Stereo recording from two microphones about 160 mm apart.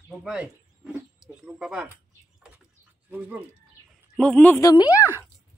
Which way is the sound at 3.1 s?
10° right (ahead or behind).